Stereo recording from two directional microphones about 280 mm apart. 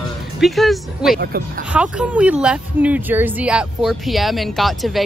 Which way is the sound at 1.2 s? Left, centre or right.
Right.